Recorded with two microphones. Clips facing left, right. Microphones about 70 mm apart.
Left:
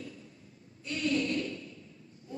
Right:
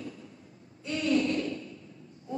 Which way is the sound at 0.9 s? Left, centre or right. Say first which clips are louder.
Right 4 dB; right.